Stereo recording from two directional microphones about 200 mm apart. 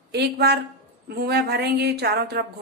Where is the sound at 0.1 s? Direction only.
55° right (ahead or behind).